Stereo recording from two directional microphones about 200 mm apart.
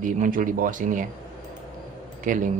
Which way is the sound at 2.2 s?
40° right (ahead or behind).